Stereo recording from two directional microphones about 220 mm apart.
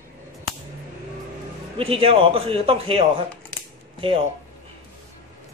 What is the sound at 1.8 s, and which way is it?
A man's voice, 25° right (ahead or behind).